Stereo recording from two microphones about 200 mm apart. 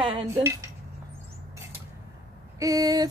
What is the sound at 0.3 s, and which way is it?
Dishes, 15° right (ahead or behind).